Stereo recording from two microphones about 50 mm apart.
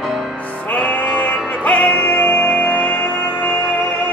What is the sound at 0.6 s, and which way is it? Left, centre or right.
Music, left.